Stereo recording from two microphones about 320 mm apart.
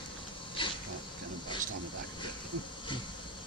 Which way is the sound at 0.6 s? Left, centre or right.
Centre.